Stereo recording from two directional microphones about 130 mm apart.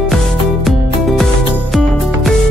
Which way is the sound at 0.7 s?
Centre (ahead or behind).